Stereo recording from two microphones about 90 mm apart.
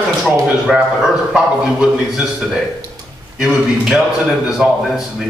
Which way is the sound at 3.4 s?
5° right (ahead or behind).